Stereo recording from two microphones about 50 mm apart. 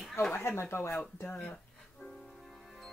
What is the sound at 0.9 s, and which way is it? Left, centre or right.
Speech, left.